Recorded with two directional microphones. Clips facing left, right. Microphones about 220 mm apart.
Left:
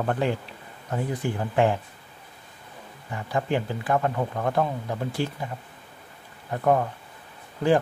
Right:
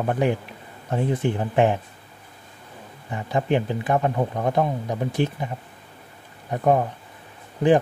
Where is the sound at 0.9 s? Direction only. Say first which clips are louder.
Right 5 dB; 25° right (ahead or behind).